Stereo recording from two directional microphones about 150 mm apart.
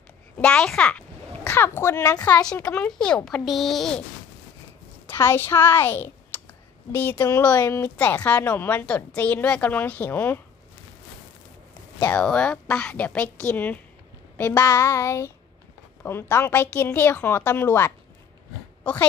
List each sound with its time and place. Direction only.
0.4 s a woman's voice: 5° left (ahead or behind)
5.0 s a woman's voice: 15° left (ahead or behind)
12.0 s a woman's voice: 10° left (ahead or behind)